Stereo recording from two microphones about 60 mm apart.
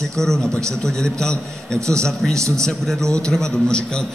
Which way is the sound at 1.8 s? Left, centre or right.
Right.